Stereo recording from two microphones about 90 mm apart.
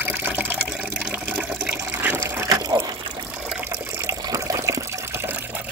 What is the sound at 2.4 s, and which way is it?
Water, 40° right (ahead or behind).